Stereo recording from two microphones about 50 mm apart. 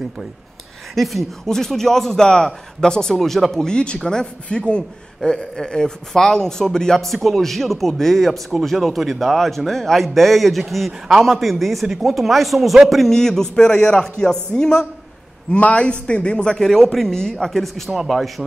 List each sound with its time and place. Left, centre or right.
0.9 s a man's voice: centre
3.5 s a man's voice: centre
15.5 s speech: left
16.5 s a man's voice: centre